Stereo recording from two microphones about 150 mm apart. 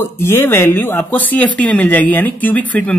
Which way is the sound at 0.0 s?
15° left (ahead or behind).